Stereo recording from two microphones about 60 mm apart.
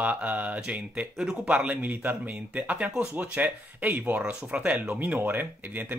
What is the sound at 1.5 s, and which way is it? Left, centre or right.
Speech, right.